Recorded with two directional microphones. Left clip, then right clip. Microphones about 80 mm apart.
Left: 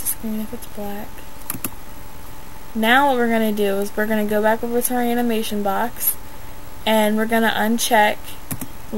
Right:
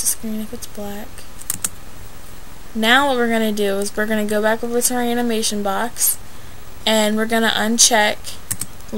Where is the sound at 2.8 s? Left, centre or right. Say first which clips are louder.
Right 1 dB; centre.